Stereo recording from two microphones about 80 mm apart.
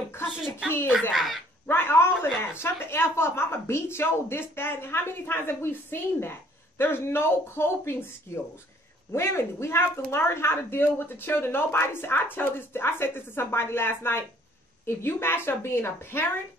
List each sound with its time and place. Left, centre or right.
0.3 s speech: centre
1.7 s a sound: left
2.5 s a woman's voice: left
9.1 s a woman's voice: left